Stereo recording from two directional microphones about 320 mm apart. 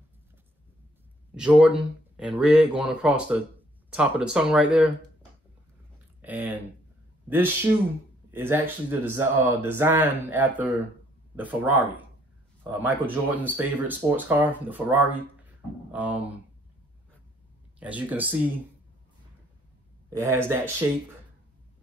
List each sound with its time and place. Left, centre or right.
1.3 s speech: centre
5.9 s a sound: centre
7.2 s speech: centre
17.7 s speech: centre
20.1 s speech: centre